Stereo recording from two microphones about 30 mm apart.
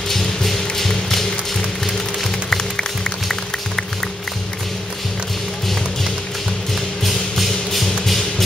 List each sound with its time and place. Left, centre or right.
0.1 s music: centre
2.5 s music: centre
7.3 s a sound: centre